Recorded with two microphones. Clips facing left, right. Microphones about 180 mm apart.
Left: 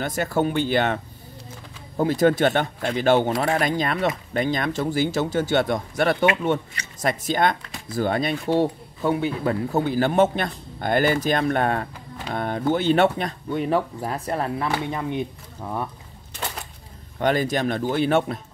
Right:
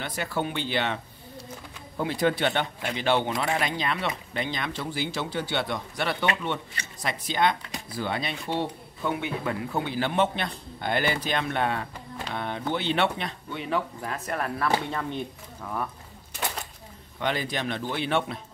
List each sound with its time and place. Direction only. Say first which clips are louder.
0.0 s speech: left 7 dB; 45° left (ahead or behind); by 14.7 s 30° left (ahead or behind)
14.9 s speech: left 5 dB; 15° left (ahead or behind)
17.2 s speech: left 7 dB; 45° left (ahead or behind)